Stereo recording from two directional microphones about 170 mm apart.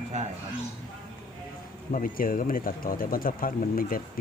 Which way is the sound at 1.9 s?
55° left (ahead or behind).